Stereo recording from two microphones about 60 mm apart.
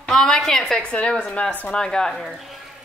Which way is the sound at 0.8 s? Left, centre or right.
Centre.